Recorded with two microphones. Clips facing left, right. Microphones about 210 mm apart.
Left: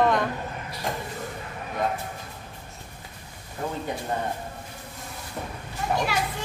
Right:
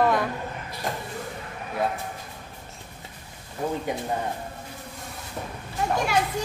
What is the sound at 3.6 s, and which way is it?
Speech, 15° right (ahead or behind).